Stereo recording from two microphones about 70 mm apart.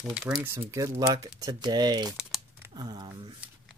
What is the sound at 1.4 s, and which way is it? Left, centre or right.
Speech, right.